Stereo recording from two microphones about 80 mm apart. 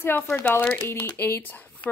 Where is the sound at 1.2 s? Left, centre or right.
Left.